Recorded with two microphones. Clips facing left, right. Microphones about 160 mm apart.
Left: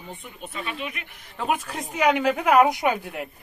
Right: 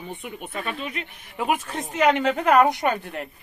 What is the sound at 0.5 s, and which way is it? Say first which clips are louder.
Speech: right 1 dB; 45° right (ahead or behind).